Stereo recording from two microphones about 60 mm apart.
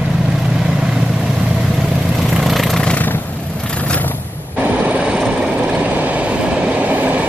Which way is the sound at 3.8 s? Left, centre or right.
Left.